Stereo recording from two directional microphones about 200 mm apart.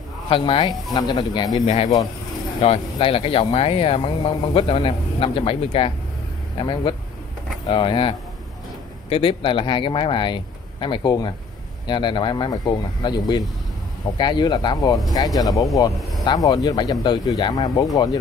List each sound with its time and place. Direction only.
0.3 s speech: 25° left (ahead or behind)
2.6 s speech: 30° left (ahead or behind)
15.9 s speech: centre (ahead or behind)
16.3 s speech: 20° left (ahead or behind)